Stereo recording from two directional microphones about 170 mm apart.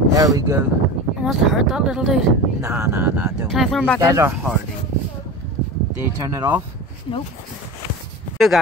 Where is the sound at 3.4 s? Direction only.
Centre (ahead or behind).